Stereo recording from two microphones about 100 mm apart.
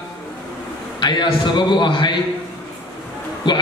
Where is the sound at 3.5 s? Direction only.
50° left (ahead or behind).